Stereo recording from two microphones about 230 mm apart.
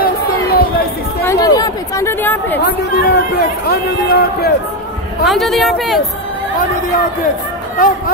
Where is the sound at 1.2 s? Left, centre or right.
Centre.